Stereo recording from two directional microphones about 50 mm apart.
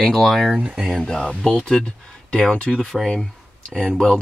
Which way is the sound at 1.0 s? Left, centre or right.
Centre.